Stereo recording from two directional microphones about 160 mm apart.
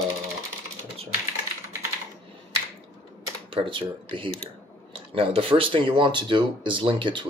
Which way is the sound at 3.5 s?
35° right (ahead or behind).